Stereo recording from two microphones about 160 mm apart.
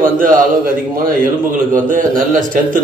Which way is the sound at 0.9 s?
60° right (ahead or behind).